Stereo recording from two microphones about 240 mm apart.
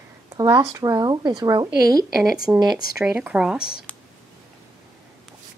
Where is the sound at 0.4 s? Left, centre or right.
Centre.